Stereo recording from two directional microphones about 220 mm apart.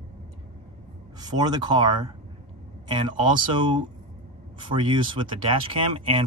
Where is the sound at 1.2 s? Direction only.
20° right (ahead or behind).